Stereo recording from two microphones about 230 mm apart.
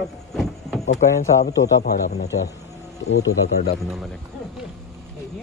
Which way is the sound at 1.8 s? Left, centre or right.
Left.